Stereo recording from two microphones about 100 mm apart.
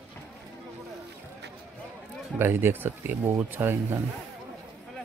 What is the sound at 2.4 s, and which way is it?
Speech, 20° right (ahead or behind).